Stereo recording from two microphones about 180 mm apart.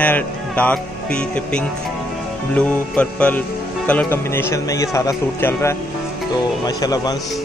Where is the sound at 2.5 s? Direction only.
5° left (ahead or behind).